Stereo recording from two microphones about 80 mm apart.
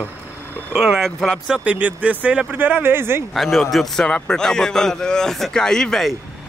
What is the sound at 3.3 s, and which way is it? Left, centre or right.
A man's voice, centre.